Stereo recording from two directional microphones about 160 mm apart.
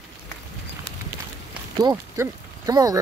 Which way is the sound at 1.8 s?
25° right (ahead or behind).